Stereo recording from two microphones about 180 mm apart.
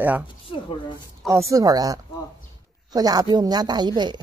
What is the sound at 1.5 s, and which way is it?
Speech, 20° right (ahead or behind).